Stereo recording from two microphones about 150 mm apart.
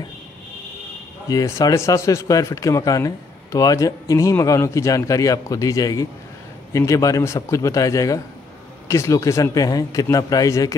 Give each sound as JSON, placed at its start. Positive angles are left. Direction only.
{"t": 1.3, "sound": "speech", "side_deg": 20}